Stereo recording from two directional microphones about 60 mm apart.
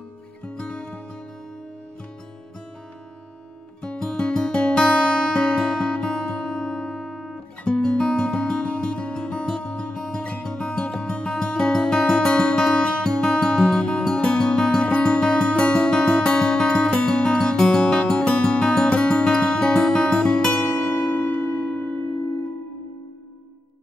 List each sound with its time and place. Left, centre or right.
0.5 s music: centre
3.8 s music: centre
7.6 s music: centre
20.5 s music: left
21.1 s a sound: left
21.6 s music: left